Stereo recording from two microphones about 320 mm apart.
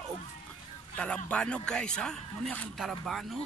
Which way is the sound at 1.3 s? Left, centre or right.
Centre.